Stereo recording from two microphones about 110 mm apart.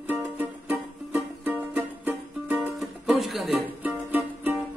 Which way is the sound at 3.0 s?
Centre (ahead or behind).